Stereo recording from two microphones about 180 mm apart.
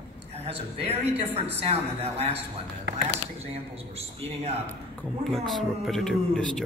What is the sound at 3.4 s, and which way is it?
A man's voice, 35° right (ahead or behind).